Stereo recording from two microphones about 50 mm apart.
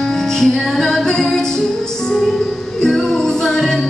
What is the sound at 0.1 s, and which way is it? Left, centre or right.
Music, centre.